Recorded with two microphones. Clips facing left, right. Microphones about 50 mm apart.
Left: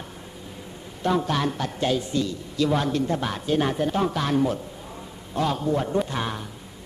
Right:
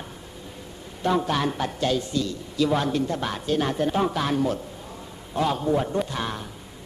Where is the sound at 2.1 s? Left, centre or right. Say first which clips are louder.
Left 1 dB; left.